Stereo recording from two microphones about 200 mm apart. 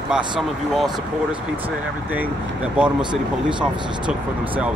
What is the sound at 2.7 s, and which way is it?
Speech, 5° right (ahead or behind).